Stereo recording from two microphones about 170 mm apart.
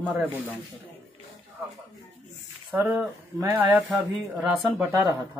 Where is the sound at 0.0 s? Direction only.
10° right (ahead or behind).